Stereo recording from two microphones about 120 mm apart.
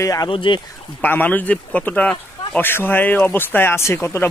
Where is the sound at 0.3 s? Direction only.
45° left (ahead or behind).